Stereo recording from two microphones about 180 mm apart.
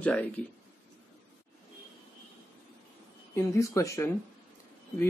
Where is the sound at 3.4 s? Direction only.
15° left (ahead or behind).